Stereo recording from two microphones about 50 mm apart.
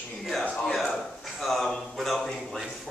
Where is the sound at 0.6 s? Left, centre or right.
Centre.